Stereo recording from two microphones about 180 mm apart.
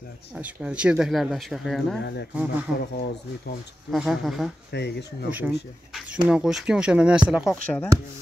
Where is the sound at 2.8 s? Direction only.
60° left (ahead or behind).